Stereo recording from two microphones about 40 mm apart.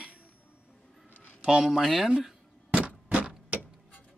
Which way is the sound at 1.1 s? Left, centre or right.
Left.